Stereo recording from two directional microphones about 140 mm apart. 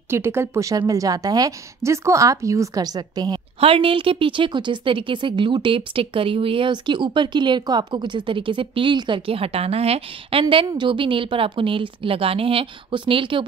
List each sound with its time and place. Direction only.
0.1 s a woman's voice: 15° right (ahead or behind); by 13.5 s 35° right (ahead or behind)